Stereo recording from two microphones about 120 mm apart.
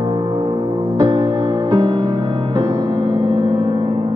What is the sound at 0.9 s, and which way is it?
Music, 35° right (ahead or behind).